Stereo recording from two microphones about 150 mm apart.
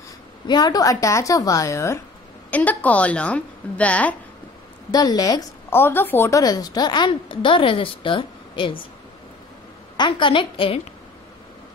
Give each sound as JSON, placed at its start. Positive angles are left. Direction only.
{"t": 0.5, "sound": "a woman's voice", "side_deg": 25}
{"t": 4.9, "sound": "a woman's voice", "side_deg": 25}
{"t": 9.9, "sound": "a woman's voice", "side_deg": 30}